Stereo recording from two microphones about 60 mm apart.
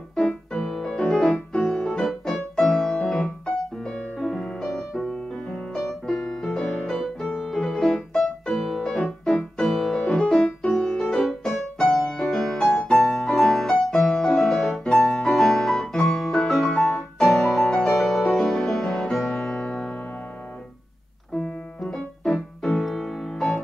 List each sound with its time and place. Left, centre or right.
0.1 s music: centre
7.4 s piano: centre
13.1 s music: centre
21.9 s music: centre